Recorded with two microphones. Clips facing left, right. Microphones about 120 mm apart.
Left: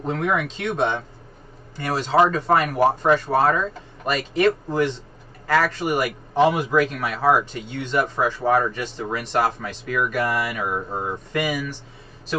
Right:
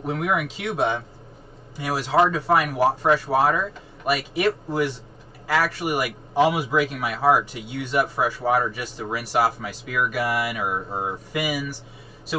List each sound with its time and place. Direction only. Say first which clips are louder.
0.0 s a man's voice: left 1 dB; 10° right (ahead or behind)